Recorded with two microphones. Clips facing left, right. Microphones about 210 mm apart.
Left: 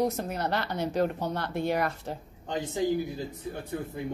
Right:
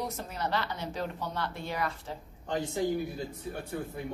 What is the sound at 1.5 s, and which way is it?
Speech, 60° left (ahead or behind).